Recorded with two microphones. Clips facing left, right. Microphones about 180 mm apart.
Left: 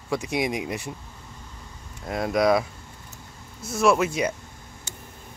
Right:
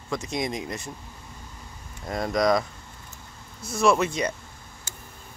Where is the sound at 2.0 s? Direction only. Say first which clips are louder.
Left 2 dB; 5° left (ahead or behind).